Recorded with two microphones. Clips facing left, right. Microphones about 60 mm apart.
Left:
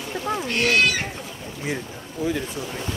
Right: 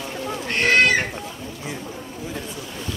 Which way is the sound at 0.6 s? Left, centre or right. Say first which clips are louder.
Right 4 dB; right.